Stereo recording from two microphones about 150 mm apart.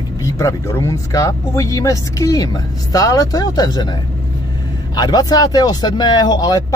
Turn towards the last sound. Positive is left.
turn(degrees=25)  # may be behind; listen again after turning